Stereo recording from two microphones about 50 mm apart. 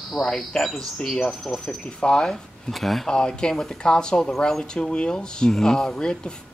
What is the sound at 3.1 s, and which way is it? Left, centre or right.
Speech, centre.